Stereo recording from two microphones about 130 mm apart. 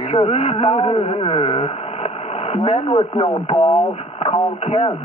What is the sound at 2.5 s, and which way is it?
Speech, 45° left (ahead or behind).